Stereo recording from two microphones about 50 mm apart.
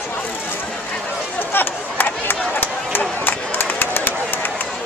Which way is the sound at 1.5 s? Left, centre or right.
Left.